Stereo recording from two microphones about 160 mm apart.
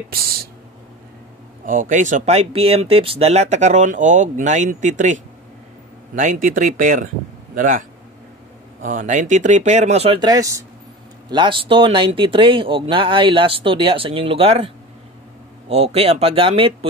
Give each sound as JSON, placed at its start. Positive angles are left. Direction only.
{"t": 1.7, "sound": "speech", "side_deg": -55}
{"t": 8.8, "sound": "speech", "side_deg": -55}
{"t": 10.2, "sound": "a man's voice", "side_deg": -20}
{"t": 15.7, "sound": "a man's voice", "side_deg": -40}